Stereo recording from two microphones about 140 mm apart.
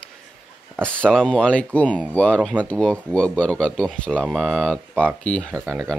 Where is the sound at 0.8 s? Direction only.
5° left (ahead or behind).